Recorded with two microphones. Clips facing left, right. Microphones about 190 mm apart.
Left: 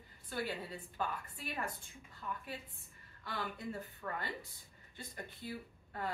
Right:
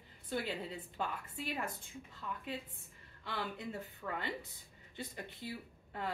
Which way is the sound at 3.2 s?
20° right (ahead or behind).